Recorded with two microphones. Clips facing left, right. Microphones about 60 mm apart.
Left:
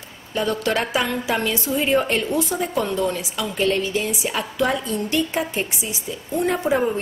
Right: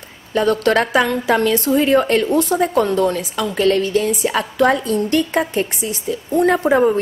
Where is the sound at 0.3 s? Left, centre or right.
Right.